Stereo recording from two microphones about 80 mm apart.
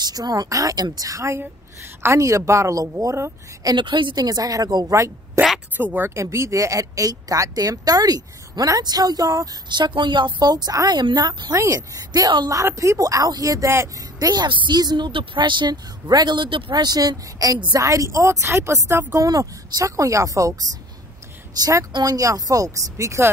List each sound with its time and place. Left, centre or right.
0.0 s speech: right
1.4 s a woman's voice: right
2.1 s a woman's voice: right
3.6 s a woman's voice: right
4.9 s speech: right
5.8 s speech: right
6.3 s speech: right
9.7 s a woman's voice: right
11.6 s speech: right
14.3 s a woman's voice: right
19.1 s speech: right